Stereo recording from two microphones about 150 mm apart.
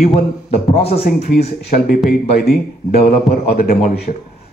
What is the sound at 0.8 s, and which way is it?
Speech, 90° left.